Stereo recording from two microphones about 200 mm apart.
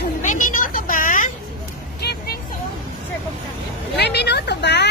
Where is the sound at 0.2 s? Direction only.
40° left (ahead or behind).